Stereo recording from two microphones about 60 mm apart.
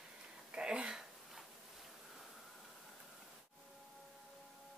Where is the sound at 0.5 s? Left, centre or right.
Centre.